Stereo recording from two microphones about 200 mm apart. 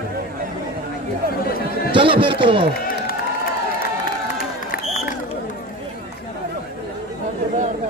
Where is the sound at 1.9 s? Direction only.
25° right (ahead or behind).